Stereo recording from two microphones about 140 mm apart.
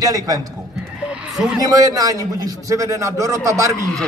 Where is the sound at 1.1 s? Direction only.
5° right (ahead or behind).